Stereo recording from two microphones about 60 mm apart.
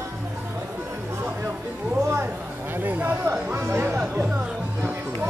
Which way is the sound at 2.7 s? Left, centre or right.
Right.